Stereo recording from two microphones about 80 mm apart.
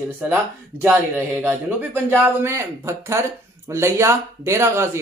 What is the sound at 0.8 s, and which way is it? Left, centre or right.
Speech, centre.